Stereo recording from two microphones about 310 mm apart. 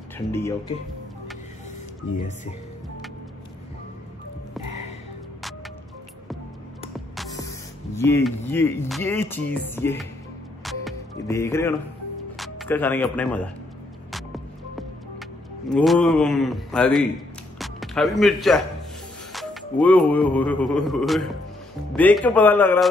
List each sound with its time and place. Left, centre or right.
0.3 s speech: centre
2.1 s speech: left
7.3 s music: centre
8.5 s speech: centre
10.6 s music: centre
12.4 s speech: centre
14.1 s music: centre
15.7 s a man's voice: centre